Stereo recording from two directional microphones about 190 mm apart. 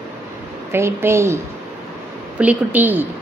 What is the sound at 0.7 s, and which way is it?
Speech, 15° right (ahead or behind).